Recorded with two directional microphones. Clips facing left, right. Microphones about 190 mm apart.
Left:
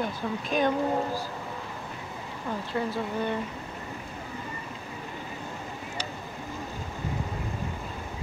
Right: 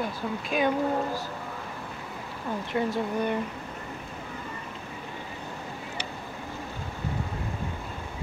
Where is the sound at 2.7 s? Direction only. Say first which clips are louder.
Right 3 dB; 20° right (ahead or behind).